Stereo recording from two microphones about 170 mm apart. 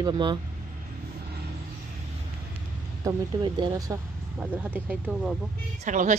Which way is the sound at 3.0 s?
20° right (ahead or behind).